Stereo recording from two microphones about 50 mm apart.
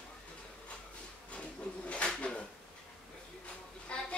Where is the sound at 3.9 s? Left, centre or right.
Left.